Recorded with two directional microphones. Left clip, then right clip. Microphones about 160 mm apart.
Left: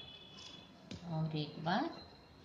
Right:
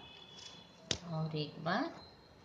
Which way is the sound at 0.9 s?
45° right (ahead or behind).